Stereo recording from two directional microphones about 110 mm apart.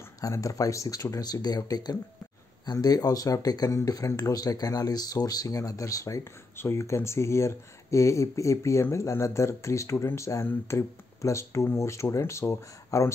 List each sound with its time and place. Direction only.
0.2 s speech: 30° left (ahead or behind)